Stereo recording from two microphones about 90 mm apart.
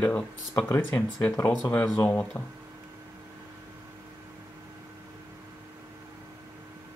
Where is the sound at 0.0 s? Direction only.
20° left (ahead or behind).